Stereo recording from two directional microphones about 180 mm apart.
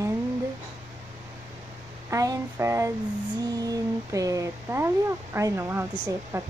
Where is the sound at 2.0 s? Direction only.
20° right (ahead or behind).